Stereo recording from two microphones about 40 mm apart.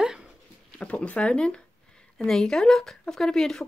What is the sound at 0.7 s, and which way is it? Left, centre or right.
Speech, left.